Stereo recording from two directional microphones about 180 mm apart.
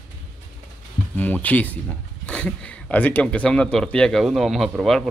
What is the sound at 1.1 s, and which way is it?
Speech, 10° left (ahead or behind).